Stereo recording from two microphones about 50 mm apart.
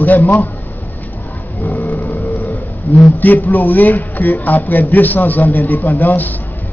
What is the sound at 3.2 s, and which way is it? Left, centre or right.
A man's voice, left.